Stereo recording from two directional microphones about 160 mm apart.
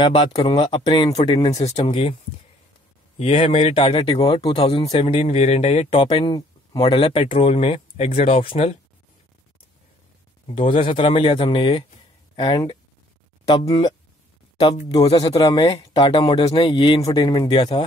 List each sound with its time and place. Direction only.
0.3 s speech: 25° left (ahead or behind)
3.2 s speech: 40° left (ahead or behind)
10.4 s speech: 35° left (ahead or behind)
14.6 s speech: 35° left (ahead or behind)
15.1 s speech: 25° left (ahead or behind)